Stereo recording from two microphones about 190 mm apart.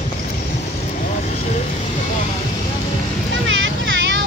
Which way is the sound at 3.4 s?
80° right.